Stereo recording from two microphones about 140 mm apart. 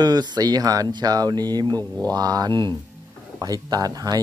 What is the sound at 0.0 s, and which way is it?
Speech, 30° right (ahead or behind).